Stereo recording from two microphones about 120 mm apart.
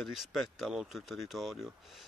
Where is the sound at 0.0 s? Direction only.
Centre (ahead or behind).